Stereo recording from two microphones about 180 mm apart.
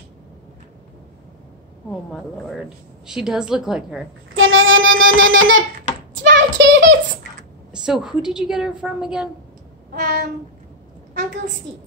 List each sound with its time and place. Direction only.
1.9 s a woman's voice: centre (ahead or behind)
4.4 s child singing: 90° right
6.1 s a sound: 85° right
7.7 s a woman's voice: 5° right (ahead or behind)
9.9 s child singing: 60° right (ahead or behind)